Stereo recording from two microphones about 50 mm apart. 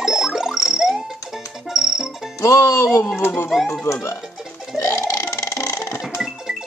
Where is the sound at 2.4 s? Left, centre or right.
Left.